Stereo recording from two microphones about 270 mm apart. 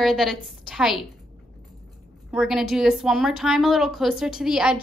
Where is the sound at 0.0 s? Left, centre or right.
Centre.